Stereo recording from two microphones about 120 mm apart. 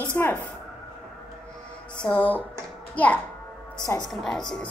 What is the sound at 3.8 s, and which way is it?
Speech, 30° left (ahead or behind).